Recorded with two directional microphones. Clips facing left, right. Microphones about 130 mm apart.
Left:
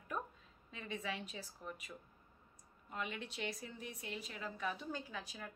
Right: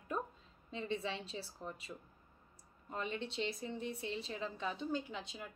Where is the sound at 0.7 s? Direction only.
30° right (ahead or behind).